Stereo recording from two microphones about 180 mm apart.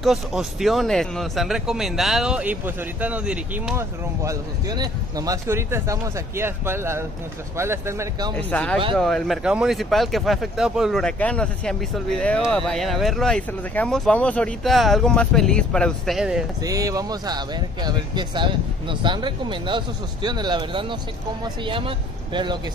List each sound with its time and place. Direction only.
0.0 s speech: centre (ahead or behind)
4.2 s speech: 20° right (ahead or behind)
8.4 s speech: 10° left (ahead or behind)
16.6 s speech: 20° right (ahead or behind)